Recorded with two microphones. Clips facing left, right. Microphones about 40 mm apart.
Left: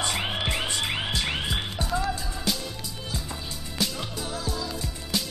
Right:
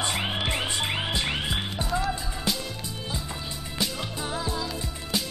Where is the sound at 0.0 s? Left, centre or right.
Centre.